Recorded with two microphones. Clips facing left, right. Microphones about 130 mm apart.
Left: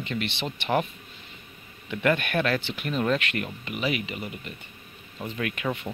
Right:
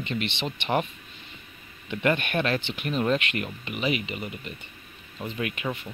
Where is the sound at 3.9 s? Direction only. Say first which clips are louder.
Right 2 dB; 50° left (ahead or behind).